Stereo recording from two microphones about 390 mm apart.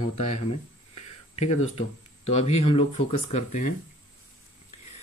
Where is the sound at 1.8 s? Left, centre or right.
Centre.